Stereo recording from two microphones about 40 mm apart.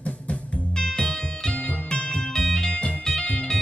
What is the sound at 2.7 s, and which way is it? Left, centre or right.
Music, left.